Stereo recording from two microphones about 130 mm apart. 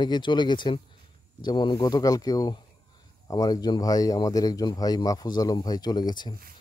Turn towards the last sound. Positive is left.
turn(degrees=35)  # may be behind; listen again after turning